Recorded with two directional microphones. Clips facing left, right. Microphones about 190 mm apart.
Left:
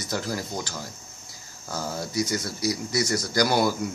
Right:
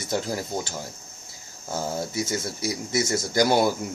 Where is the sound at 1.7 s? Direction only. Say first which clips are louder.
Right 3 dB; 20° right (ahead or behind).